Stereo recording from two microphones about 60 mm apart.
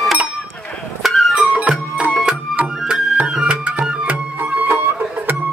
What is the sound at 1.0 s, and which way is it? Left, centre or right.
Music, centre.